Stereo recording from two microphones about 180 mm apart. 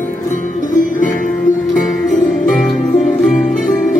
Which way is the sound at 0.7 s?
45° left (ahead or behind).